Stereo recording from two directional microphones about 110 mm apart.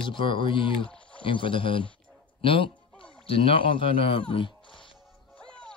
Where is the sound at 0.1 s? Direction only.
50° left (ahead or behind).